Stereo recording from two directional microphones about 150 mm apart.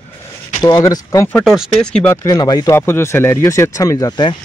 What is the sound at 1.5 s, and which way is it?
Speech, 5° left (ahead or behind).